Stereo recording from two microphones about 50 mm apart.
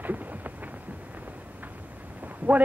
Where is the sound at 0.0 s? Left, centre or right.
Right.